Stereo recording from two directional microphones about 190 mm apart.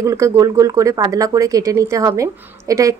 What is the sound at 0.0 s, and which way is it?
A woman's voice, 15° right (ahead or behind).